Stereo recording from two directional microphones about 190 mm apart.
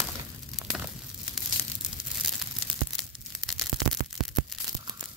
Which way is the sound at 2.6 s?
Centre (ahead or behind).